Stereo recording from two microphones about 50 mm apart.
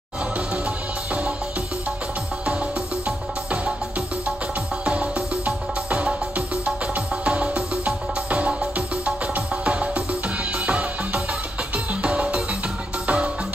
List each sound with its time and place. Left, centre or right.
4.8 s music: right